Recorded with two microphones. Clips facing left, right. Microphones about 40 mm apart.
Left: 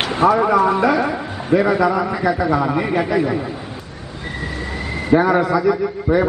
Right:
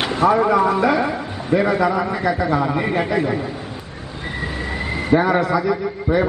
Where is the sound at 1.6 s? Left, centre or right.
Centre.